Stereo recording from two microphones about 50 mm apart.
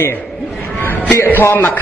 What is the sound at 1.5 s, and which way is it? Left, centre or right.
Speech, left.